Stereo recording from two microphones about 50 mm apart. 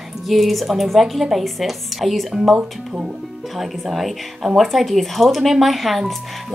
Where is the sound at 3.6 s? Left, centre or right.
Centre.